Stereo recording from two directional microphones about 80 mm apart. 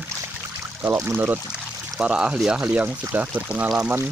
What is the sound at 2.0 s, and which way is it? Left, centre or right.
Speech, centre.